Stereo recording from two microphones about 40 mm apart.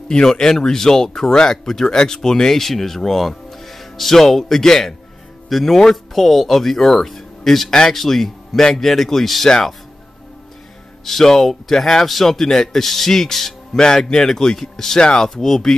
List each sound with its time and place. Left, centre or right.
0.1 s speech: centre
11.1 s speech: centre
13.7 s speech: centre
15.0 s speech: left
15.2 s speech: centre